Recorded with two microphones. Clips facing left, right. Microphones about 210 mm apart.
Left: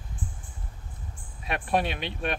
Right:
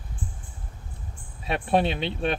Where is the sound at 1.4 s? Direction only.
25° right (ahead or behind).